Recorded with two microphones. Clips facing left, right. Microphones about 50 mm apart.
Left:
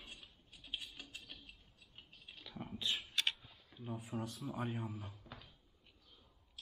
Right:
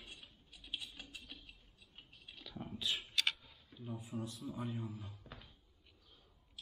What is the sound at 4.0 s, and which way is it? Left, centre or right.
Speech, left.